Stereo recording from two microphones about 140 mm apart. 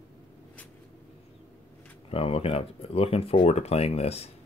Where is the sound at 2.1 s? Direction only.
45° left (ahead or behind).